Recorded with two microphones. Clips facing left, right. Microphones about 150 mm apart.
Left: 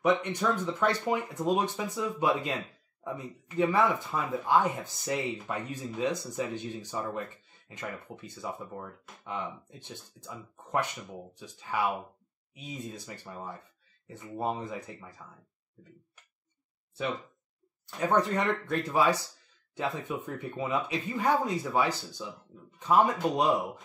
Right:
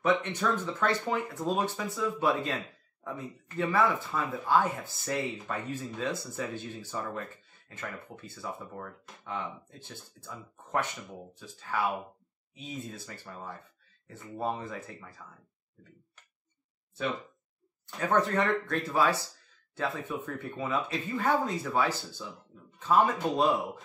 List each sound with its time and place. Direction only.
0.2 s speech: 10° left (ahead or behind)
17.8 s speech: 15° left (ahead or behind)